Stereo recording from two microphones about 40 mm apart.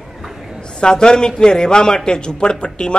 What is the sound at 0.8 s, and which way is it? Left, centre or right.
A man's voice, centre.